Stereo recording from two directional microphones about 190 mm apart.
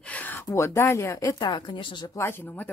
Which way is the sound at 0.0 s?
10° left (ahead or behind).